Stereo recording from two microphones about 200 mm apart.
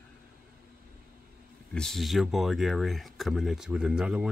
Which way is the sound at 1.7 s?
Centre (ahead or behind).